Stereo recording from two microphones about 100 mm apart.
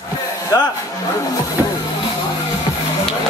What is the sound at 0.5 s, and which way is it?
Speech, 35° left (ahead or behind).